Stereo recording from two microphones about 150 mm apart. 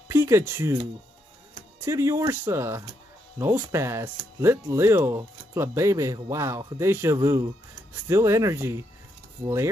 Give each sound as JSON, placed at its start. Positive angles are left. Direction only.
{"t": 0.1, "sound": "speech", "side_deg": -15}
{"t": 1.9, "sound": "speech", "side_deg": -20}